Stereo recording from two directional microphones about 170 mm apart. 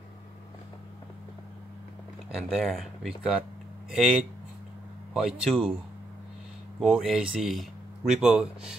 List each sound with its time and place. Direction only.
2.5 s speech: centre (ahead or behind)
6.8 s speech: centre (ahead or behind)